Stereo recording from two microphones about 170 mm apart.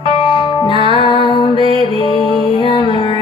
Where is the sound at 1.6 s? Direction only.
30° right (ahead or behind).